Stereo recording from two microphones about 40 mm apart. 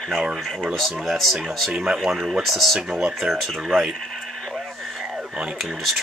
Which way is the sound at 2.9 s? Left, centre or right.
Centre.